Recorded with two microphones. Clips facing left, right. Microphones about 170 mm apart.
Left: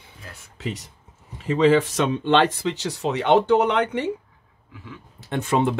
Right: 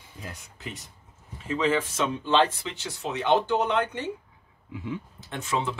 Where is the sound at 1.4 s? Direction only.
70° left (ahead or behind).